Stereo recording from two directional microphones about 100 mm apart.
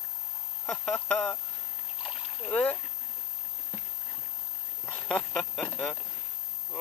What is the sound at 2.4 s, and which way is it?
Speech, 15° left (ahead or behind).